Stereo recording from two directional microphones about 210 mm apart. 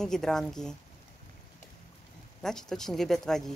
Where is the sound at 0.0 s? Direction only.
Centre (ahead or behind).